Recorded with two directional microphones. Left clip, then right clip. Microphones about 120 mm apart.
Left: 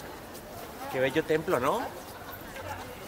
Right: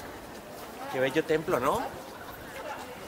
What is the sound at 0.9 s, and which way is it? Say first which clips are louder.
Speech: even; 45° left (ahead or behind).